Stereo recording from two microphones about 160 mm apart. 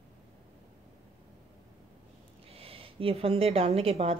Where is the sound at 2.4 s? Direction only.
35° right (ahead or behind).